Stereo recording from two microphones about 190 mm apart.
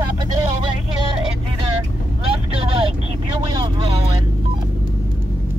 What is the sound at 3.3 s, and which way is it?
Speech, 25° right (ahead or behind).